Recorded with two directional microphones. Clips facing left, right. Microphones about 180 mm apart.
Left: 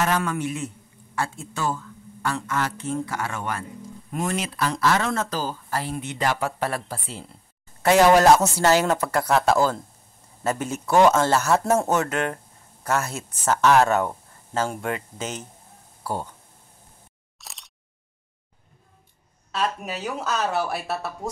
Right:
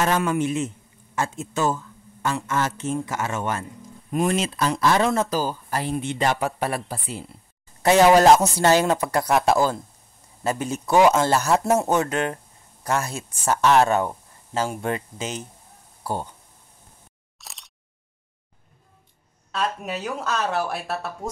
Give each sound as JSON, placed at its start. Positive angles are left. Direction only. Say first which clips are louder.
{"t": 0.0, "sound": "speech", "louder": "right 2 dB", "side_deg": -20}
{"t": 14.8, "sound": "speech", "louder": "right 2 dB", "side_deg": -25}
{"t": 15.1, "sound": "speech", "louder": "right 1 dB", "side_deg": -10}
{"t": 17.4, "sound": "single-lens reflex camera", "louder": "even", "side_deg": 0}
{"t": 19.5, "sound": "speech", "louder": "even", "side_deg": 0}